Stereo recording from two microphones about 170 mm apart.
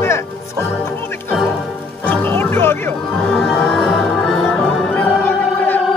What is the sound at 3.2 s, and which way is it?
Music, centre (ahead or behind).